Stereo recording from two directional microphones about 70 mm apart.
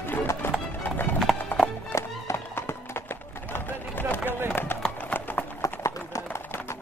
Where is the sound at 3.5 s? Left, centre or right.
Left.